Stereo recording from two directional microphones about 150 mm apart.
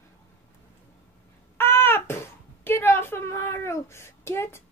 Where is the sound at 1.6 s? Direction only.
15° left (ahead or behind).